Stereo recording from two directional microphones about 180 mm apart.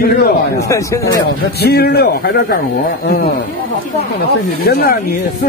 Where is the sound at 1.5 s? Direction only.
60° left (ahead or behind).